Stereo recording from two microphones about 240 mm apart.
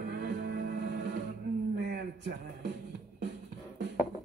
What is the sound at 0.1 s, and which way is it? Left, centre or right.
Music, right.